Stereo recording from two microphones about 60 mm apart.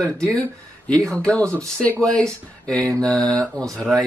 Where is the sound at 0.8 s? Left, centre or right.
Centre.